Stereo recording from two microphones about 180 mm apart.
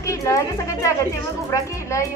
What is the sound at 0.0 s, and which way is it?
A woman's voice, 15° left (ahead or behind).